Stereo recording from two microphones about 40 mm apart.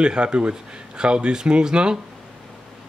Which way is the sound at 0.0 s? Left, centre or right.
Right.